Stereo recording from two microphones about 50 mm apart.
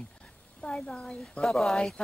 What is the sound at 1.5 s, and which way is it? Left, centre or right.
Speech, centre.